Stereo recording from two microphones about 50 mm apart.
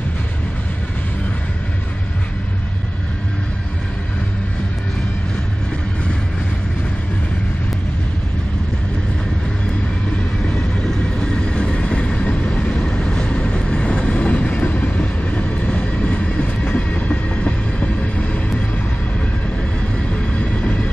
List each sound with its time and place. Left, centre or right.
10.9 s train: centre
20.1 s train: left